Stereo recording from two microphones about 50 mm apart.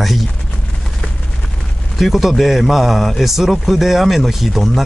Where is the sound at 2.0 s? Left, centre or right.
Centre.